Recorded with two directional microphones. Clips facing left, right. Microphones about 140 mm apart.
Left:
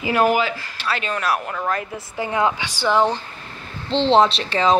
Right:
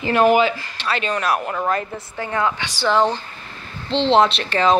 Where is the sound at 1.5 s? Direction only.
10° right (ahead or behind).